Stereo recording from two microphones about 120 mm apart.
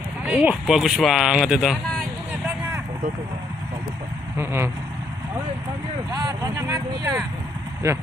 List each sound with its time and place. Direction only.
0.2 s speech: 10° right (ahead or behind)
4.4 s speech: 20° right (ahead or behind)
6.1 s speech: 30° right (ahead or behind)